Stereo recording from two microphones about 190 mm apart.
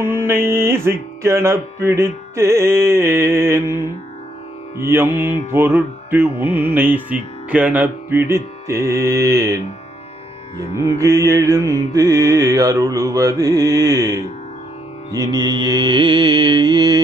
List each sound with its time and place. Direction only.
0.0 s music: 10° right (ahead or behind)
10.7 s music: 15° right (ahead or behind)
15.1 s mantra: 20° right (ahead or behind)